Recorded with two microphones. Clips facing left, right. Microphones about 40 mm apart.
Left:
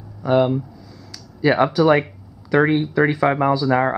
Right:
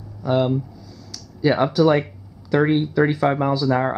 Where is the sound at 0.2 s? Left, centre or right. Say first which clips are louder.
Left 3 dB; centre.